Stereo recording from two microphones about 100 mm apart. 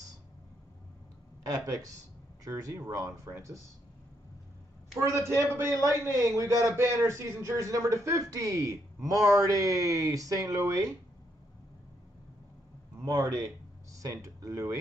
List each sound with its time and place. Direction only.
1.4 s a man's voice: 35° right (ahead or behind)
4.9 s a man's voice: 25° right (ahead or behind)
13.2 s a man's voice: 30° right (ahead or behind)